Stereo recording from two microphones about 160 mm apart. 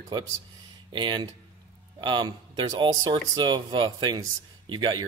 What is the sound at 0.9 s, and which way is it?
Speech, 30° right (ahead or behind).